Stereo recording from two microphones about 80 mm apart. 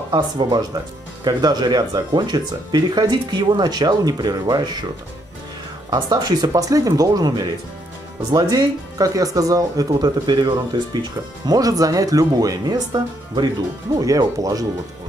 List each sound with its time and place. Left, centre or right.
0.1 s speech: right
1.2 s speech: right
5.9 s speech: right
8.3 s speech: right